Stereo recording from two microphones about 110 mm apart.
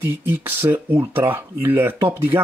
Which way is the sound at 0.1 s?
20° right (ahead or behind).